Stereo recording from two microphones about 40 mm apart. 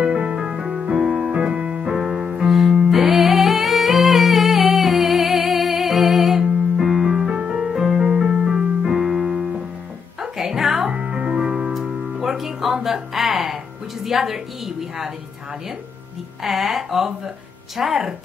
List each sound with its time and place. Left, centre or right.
0.2 s music: right
2.0 s music: centre
8.0 s keyboard: centre
10.2 s music: centre
10.9 s music: right
11.8 s music: centre
14.0 s a woman's voice: centre
16.4 s speech: centre